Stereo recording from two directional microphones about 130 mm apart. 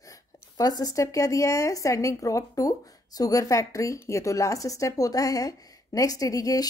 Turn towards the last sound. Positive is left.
turn(degrees=25)  # may be behind; listen again after turning